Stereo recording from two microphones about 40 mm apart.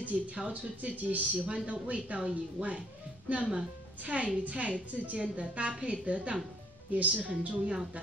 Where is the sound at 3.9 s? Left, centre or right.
Right.